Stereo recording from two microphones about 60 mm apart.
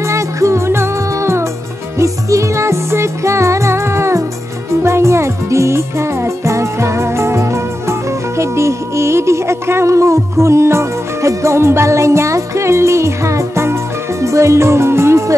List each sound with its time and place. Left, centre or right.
0.0 s music: right